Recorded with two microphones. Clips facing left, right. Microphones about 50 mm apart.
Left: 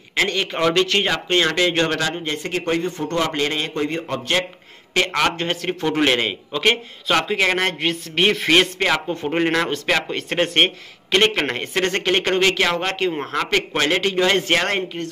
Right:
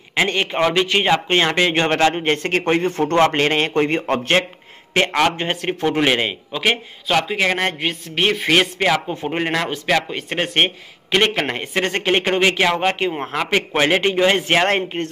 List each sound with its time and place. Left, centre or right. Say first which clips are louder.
0.5 s speech: right 1 dB; centre; by 2.2 s right
2.2 s a man's voice: right 5 dB; right
4.9 s speech: right 2 dB; right
5.9 s a man's voice: left 2 dB; centre
14.7 s a man's voice: right 4 dB; right